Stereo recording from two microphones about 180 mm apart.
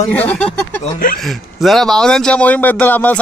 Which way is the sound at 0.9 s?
55° left (ahead or behind).